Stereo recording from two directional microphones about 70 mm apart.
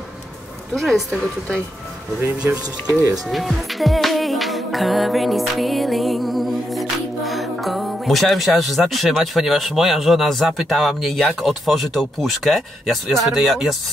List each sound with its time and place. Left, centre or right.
0.7 s music: centre
3.3 s music: centre